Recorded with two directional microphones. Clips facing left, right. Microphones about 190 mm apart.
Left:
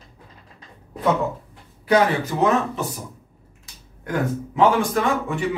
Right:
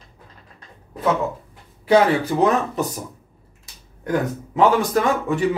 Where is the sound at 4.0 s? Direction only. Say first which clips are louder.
Right 2 dB; 40° right (ahead or behind).